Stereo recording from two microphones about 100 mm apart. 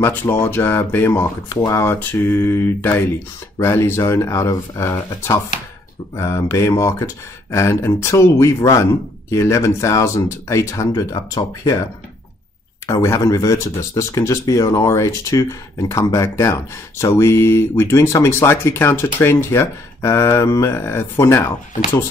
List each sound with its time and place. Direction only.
0.0 s speech: 20° left (ahead or behind)